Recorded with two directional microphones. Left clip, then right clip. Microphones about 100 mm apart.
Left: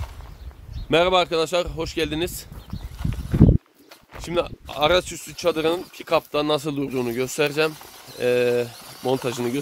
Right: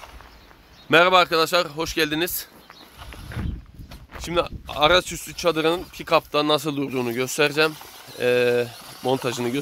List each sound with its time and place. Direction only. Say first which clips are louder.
0.8 s speech: right 3 dB; 5° right (ahead or behind)
4.1 s speech: right 1 dB; 15° right (ahead or behind)
8.7 s a sound: right 1 dB; 50° left (ahead or behind)
9.1 s speech: even; 10° right (ahead or behind)